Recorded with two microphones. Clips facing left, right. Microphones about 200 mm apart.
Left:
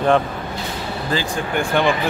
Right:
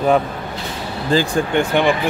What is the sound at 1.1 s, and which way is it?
Speech, 30° right (ahead or behind).